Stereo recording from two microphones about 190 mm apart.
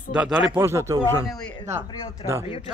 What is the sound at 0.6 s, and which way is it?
Speech, 15° right (ahead or behind).